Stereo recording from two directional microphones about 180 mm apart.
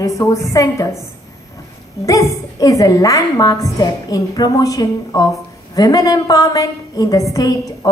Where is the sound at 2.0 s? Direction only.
20° left (ahead or behind).